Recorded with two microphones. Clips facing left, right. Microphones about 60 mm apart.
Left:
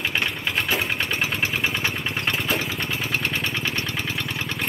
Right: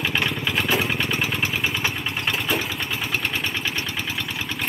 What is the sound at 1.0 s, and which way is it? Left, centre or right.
Vehicle, left.